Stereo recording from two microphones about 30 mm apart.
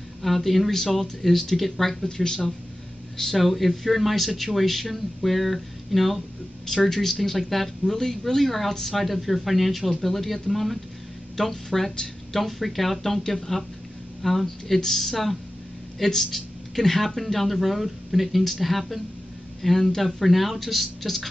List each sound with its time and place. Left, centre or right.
0.2 s speech: centre
2.0 s speech: left
3.3 s speech: centre
7.9 s speech: centre
16.3 s a sound: centre
16.8 s speech: centre